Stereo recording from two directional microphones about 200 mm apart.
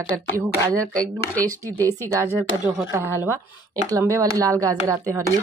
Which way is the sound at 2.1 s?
15° right (ahead or behind).